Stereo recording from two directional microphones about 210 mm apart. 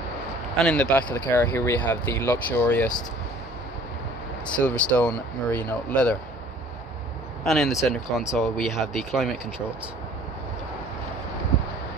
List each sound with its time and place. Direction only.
0.9 s speech: 10° left (ahead or behind)
4.5 s speech: 5° left (ahead or behind)
7.4 s speech: centre (ahead or behind)